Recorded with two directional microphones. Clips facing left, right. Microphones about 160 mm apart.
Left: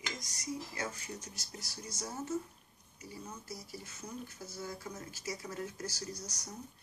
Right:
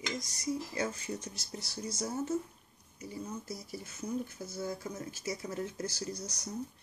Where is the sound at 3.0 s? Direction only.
25° right (ahead or behind).